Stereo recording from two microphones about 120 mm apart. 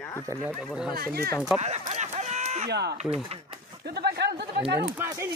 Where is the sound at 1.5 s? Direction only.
65° right (ahead or behind).